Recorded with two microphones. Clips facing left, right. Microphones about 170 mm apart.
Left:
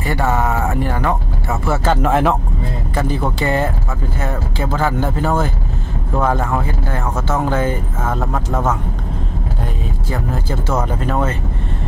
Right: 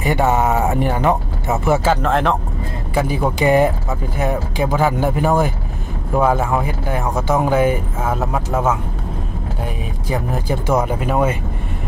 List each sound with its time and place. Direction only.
0.0 s speech: 20° right (ahead or behind)
2.0 s speech: 5° left (ahead or behind)
2.9 s speech: 10° right (ahead or behind)
10.0 s speech: 15° right (ahead or behind)